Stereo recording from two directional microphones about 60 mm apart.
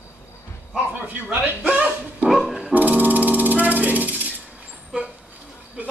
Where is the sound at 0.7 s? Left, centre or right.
Right.